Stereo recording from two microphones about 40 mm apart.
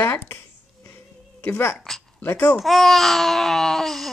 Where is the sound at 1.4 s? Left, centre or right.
Left.